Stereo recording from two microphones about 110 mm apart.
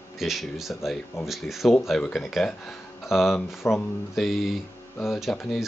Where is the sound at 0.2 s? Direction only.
Centre (ahead or behind).